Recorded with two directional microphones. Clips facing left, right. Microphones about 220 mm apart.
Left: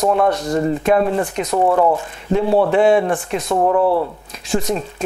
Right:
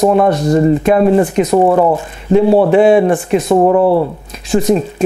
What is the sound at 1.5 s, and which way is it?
Speech, 25° right (ahead or behind).